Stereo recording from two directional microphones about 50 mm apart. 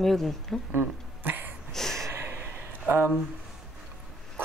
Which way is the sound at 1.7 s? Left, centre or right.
Centre.